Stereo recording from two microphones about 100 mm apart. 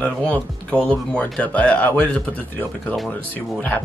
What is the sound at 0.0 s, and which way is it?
Speech, 15° left (ahead or behind).